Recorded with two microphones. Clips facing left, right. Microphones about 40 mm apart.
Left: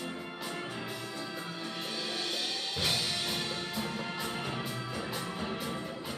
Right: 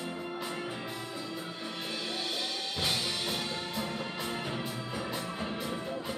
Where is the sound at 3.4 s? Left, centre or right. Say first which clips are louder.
Even; centre.